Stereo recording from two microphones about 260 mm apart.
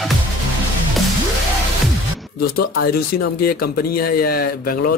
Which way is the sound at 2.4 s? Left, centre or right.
Left.